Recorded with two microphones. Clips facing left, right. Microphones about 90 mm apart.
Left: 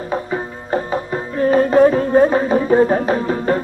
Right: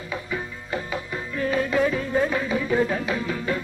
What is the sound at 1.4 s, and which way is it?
Music, 40° left (ahead or behind).